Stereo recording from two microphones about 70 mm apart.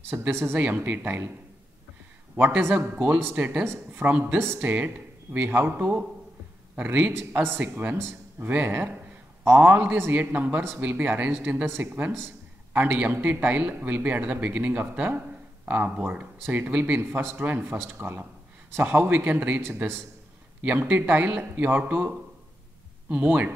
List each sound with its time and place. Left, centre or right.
0.3 s speech: right
0.6 s speech: right
2.3 s speech: right
3.6 s speech: right
4.6 s a man's voice: right